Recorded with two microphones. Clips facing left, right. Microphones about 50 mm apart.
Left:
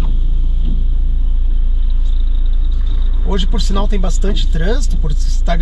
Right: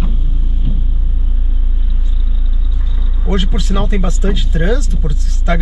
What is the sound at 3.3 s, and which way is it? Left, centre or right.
Speech, right.